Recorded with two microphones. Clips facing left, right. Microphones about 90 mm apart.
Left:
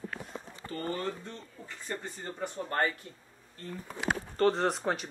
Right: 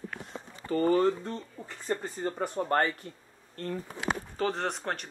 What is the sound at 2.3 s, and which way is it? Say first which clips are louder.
Speech: right 6 dB; 50° right (ahead or behind).